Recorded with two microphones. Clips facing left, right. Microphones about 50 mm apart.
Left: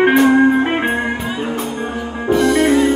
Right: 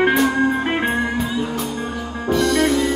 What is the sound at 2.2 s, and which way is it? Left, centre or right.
Music, centre.